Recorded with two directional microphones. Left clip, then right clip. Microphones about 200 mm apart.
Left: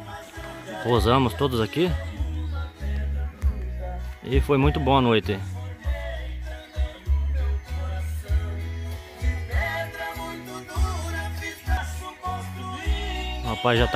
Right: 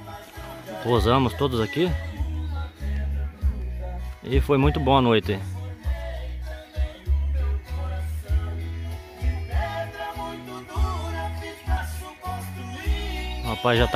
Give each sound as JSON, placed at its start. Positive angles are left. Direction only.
{"t": 0.8, "sound": "speech", "side_deg": 0}
{"t": 4.2, "sound": "speech", "side_deg": 0}
{"t": 9.2, "sound": "music", "side_deg": 20}
{"t": 12.0, "sound": "music", "side_deg": -35}
{"t": 13.5, "sound": "speech", "side_deg": -5}